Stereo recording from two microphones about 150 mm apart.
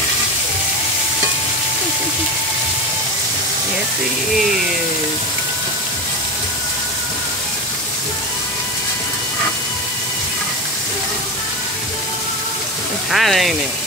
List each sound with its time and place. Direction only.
13.1 s speech: centre (ahead or behind)